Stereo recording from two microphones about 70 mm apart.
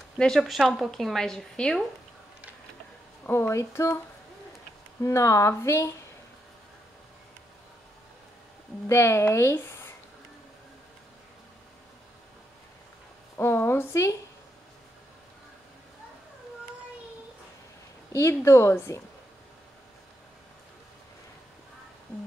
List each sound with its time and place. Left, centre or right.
0.4 s a woman's voice: centre
3.3 s speech: left
5.0 s speech: left
8.8 s speech: left
13.4 s speech: left
18.1 s speech: left